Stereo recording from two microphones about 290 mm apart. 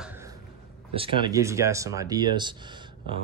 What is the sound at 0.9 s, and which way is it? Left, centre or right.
Speech, centre.